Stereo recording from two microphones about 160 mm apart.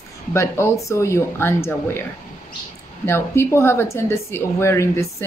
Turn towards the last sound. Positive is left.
turn(degrees=15)  # may be behind; listen again after turning